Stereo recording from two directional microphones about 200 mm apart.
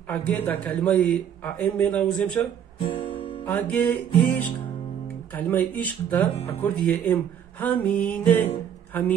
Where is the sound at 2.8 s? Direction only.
25° left (ahead or behind).